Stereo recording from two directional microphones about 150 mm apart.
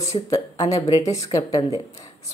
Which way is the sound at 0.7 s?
35° left (ahead or behind).